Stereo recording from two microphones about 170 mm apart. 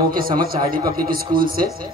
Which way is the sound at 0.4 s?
60° right (ahead or behind).